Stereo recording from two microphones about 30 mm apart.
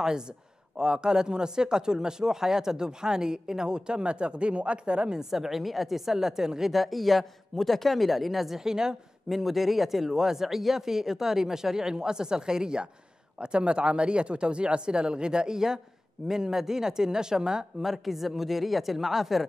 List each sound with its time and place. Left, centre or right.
0.7 s speech: right
5.3 s speech: centre
6.7 s speech: centre
8.5 s speech: centre
9.3 s speech: centre; by 12.8 s right
13.4 s speech: right
17.8 s speech: centre